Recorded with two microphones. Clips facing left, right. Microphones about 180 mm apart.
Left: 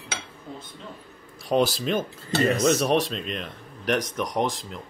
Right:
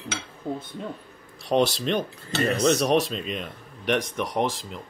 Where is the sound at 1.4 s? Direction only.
Centre (ahead or behind).